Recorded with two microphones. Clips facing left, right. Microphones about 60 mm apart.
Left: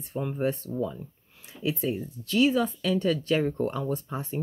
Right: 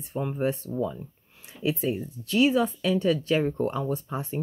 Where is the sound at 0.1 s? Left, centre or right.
Centre.